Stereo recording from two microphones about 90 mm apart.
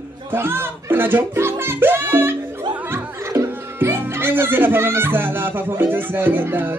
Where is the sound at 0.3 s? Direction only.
25° right (ahead or behind).